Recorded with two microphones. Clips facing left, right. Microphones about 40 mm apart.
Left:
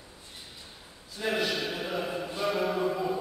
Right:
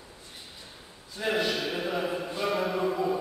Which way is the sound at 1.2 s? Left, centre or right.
Centre.